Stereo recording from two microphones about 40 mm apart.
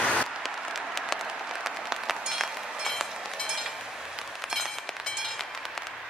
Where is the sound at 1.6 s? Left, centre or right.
Centre.